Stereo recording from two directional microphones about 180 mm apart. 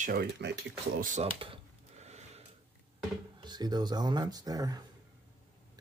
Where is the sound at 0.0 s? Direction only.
55° right (ahead or behind).